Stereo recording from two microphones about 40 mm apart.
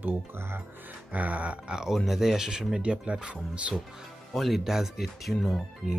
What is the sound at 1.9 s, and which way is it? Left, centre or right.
Speech, centre.